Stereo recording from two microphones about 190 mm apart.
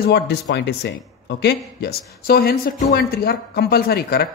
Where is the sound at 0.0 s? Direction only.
60° left (ahead or behind).